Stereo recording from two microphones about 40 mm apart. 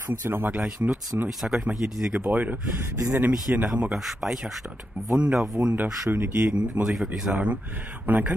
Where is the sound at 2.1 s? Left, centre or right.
Right.